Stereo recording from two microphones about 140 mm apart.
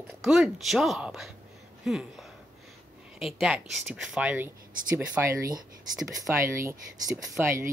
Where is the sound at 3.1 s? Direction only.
Centre (ahead or behind).